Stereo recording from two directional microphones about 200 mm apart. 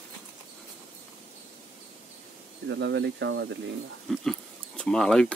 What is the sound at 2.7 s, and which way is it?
Speech, 60° right (ahead or behind).